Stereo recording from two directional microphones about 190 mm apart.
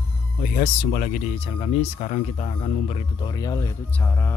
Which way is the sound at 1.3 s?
30° left (ahead or behind).